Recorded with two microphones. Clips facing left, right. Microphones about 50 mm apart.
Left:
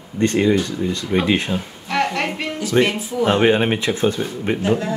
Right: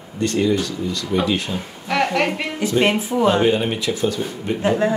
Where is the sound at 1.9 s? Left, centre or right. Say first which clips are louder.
Right 1 dB; centre.